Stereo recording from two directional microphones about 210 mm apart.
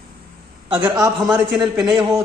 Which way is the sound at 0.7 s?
10° right (ahead or behind).